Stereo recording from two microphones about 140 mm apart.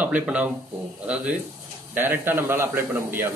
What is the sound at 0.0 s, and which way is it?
Speech, 10° right (ahead or behind).